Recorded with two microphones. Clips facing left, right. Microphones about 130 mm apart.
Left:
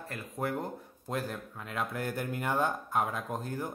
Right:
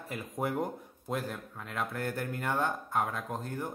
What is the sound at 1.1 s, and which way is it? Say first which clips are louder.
Speech: even; centre (ahead or behind).